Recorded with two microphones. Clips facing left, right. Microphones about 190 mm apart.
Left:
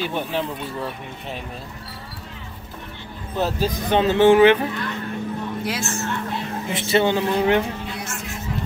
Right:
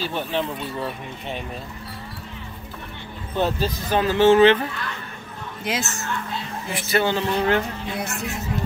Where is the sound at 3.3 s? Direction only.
Centre (ahead or behind).